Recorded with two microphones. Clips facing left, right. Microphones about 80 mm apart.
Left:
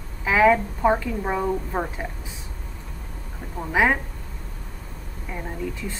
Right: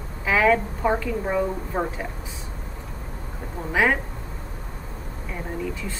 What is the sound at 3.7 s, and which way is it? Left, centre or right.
Speech, centre.